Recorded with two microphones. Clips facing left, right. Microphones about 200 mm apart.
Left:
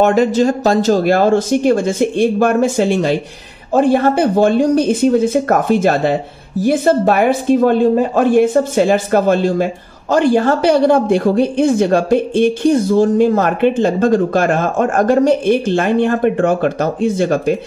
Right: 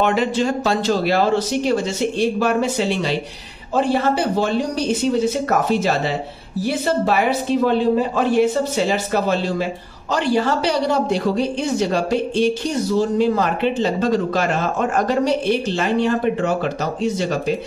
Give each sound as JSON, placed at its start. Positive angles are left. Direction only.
{"t": 0.0, "sound": "speech", "side_deg": 45}